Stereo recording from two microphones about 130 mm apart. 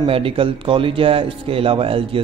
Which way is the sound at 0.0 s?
45° right (ahead or behind).